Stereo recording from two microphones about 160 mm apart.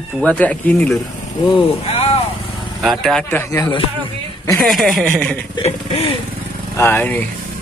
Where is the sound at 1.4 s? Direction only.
35° left (ahead or behind).